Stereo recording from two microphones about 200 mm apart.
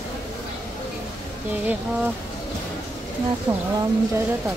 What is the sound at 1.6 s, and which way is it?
Speech, 10° right (ahead or behind).